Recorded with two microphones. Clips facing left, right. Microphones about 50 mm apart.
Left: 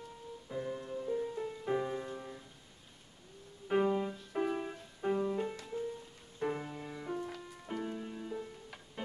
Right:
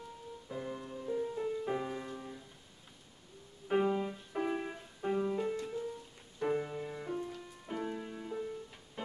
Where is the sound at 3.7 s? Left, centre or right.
Centre.